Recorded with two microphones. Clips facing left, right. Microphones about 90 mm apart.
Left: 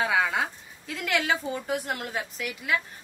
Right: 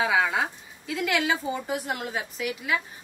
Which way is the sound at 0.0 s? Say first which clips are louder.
Right 1 dB; 5° right (ahead or behind).